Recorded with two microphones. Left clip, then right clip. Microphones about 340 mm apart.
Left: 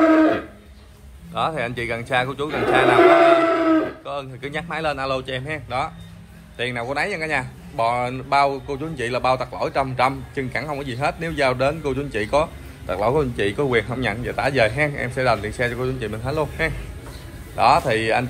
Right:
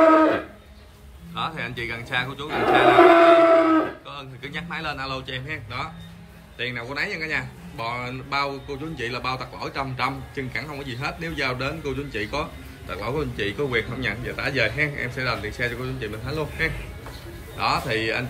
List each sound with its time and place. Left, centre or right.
1.3 s speech: centre
3.0 s music: centre
4.0 s speech: centre